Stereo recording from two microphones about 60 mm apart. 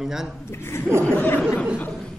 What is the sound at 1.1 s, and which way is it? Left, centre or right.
Speech, left.